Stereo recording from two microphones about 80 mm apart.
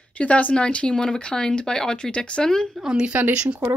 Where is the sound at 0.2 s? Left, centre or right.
Centre.